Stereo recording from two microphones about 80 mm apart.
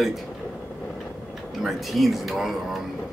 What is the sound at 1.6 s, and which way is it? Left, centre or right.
Speech, centre.